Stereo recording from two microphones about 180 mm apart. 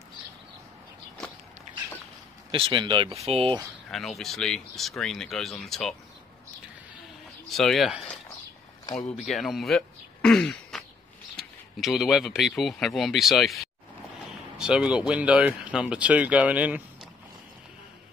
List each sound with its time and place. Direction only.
2.5 s speech: 30° right (ahead or behind)
3.9 s speech: centre (ahead or behind)
7.4 s speech: centre (ahead or behind)
9.1 s speech: centre (ahead or behind)